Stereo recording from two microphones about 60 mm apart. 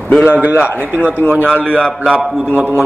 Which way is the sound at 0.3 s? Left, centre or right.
Right.